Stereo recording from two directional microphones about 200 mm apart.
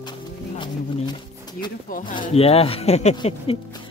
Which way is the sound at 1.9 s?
40° left (ahead or behind).